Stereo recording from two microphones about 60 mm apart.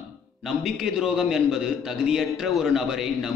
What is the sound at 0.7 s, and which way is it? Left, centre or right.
A man's voice, centre.